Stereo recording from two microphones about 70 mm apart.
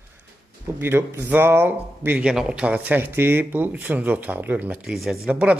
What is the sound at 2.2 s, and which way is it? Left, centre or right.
Speech, centre.